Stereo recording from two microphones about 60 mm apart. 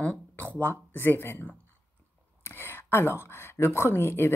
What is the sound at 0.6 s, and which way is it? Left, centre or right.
Speech, left.